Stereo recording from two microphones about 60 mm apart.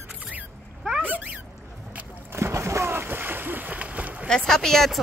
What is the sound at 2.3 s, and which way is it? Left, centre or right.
Splash, right.